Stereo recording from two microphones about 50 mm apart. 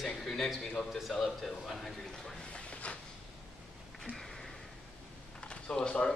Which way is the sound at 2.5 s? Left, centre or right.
Left.